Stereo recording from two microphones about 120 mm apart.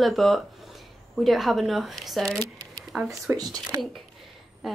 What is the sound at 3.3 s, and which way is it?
Speech, 20° right (ahead or behind).